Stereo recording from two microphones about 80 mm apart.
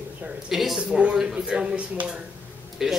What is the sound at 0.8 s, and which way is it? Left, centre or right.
Speech, centre.